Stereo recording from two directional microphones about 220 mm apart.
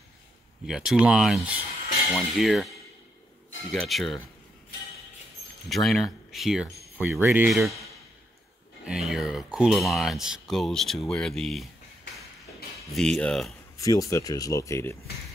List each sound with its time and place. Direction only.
0.7 s speech: centre (ahead or behind)
3.8 s speech: centre (ahead or behind)
5.7 s speech: centre (ahead or behind)
12.9 s speech: 5° left (ahead or behind)
13.7 s speech: 15° left (ahead or behind)